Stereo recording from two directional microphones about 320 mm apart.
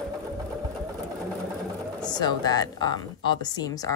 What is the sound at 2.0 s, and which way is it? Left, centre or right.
A woman's voice, centre.